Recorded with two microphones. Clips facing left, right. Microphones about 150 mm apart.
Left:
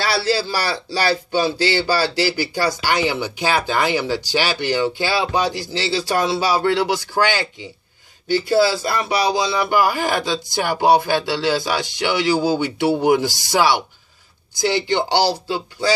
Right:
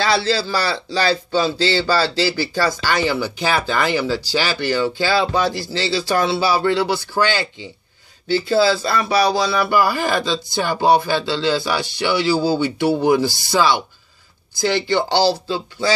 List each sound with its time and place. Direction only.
0.2 s speech: 15° left (ahead or behind)